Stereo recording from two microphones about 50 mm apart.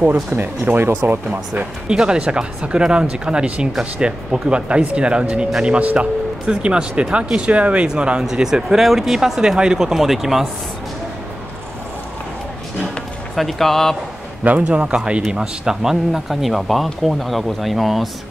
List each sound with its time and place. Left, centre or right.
0.0 s speech: right
0.4 s speech: right
1.5 s speech: centre
13.4 s speech: centre
14.6 s speech: right; by 18.1 s centre